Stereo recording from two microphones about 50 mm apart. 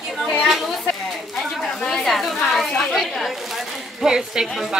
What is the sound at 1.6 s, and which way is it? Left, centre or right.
A woman's voice, centre.